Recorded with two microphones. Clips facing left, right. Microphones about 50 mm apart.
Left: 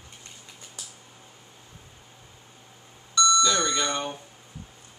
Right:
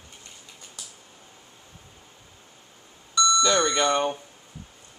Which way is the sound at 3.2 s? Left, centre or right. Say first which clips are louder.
Even; centre.